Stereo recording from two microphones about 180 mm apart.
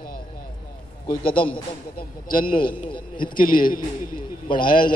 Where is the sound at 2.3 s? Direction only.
50° left (ahead or behind).